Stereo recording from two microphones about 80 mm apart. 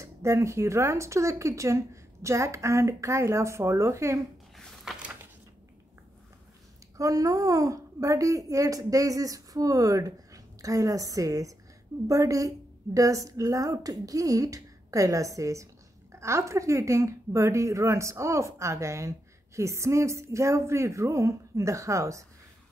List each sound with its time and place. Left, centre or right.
0.0 s a woman's voice: right
4.9 s a sound: centre
7.0 s a woman's voice: right